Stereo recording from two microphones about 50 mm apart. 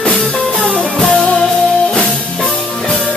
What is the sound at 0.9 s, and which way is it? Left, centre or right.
Music, centre.